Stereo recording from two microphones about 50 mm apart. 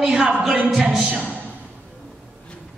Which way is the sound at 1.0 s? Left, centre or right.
Right.